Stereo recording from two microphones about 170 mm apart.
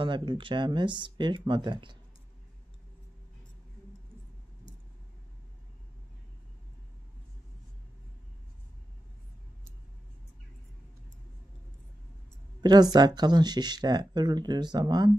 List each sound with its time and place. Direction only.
0.0 s speech: 30° right (ahead or behind)
12.9 s speech: 25° right (ahead or behind)